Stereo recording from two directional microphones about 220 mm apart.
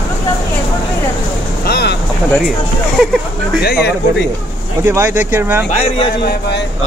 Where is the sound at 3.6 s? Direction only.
45° left (ahead or behind).